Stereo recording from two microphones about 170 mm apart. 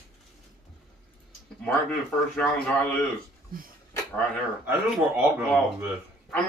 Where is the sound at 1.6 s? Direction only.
5° left (ahead or behind).